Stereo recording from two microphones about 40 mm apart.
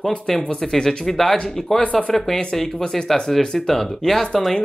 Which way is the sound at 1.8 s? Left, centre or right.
Left.